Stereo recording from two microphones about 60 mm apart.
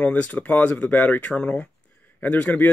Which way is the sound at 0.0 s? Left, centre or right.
Left.